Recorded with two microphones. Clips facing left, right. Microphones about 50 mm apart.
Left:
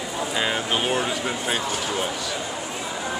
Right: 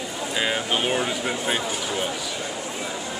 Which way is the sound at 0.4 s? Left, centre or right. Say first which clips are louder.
Right 1 dB; centre.